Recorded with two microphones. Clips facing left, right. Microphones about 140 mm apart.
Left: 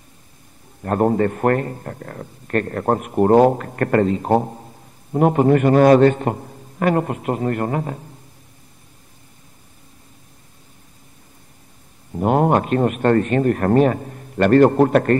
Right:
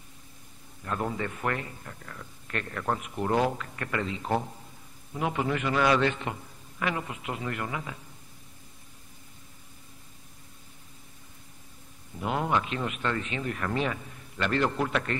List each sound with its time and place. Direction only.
0.8 s a man's voice: 50° left (ahead or behind)
12.1 s a man's voice: 50° left (ahead or behind)